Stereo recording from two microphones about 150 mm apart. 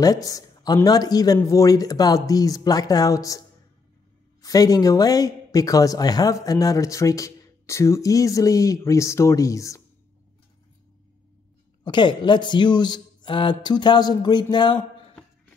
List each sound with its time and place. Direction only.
0.0 s speech: 25° left (ahead or behind)
11.8 s speech: 30° left (ahead or behind)